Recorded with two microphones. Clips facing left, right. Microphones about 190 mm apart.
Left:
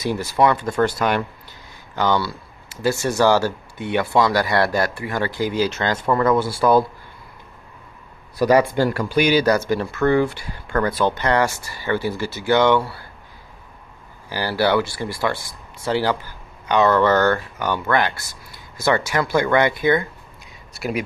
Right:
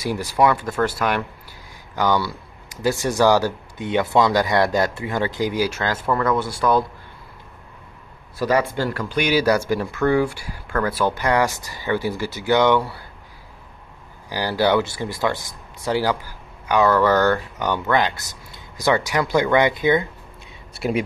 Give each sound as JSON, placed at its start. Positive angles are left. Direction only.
{"t": 0.0, "sound": "speech", "side_deg": -15}
{"t": 2.0, "sound": "speech", "side_deg": -15}
{"t": 8.4, "sound": "speech", "side_deg": 15}
{"t": 9.2, "sound": "speech", "side_deg": -5}
{"t": 14.3, "sound": "speech", "side_deg": -15}
{"t": 20.7, "sound": "speech", "side_deg": -30}